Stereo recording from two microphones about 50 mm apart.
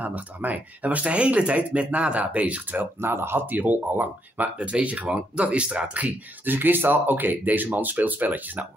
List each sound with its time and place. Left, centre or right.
0.0 s speech: right
3.0 s speech: right
3.4 s speech: right
6.4 s speech: right